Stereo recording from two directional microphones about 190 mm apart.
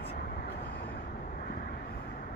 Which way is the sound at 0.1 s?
60° left (ahead or behind).